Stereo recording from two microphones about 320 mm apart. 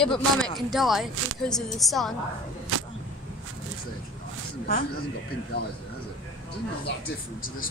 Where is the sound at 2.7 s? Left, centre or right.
Right.